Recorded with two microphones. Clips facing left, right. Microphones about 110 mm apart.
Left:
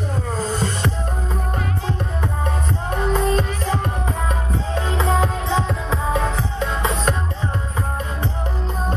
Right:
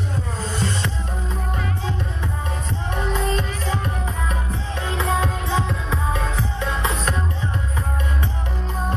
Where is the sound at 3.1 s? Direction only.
45° left (ahead or behind).